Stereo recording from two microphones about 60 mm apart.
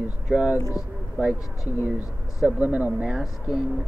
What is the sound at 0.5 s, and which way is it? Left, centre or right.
Speech, left.